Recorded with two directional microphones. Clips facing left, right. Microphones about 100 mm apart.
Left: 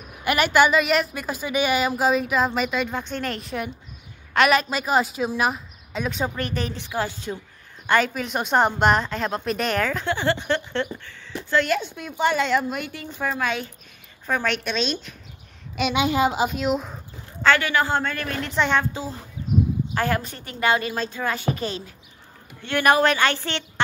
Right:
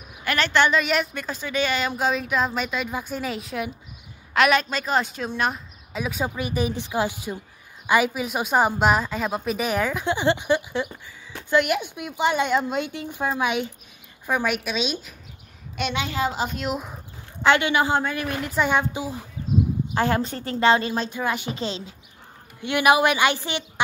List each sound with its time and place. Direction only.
0.2 s a woman's voice: 10° left (ahead or behind); by 15.1 s 10° right (ahead or behind)
15.9 s a woman's voice: 15° left (ahead or behind)
16.4 s a woman's voice: centre (ahead or behind)
17.4 s a woman's voice: 20° right (ahead or behind)